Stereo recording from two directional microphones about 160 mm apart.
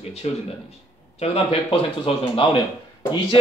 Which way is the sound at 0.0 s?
40° left (ahead or behind).